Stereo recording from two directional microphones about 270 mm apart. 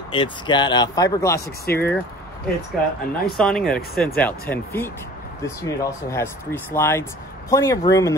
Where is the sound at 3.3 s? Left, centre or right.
Centre.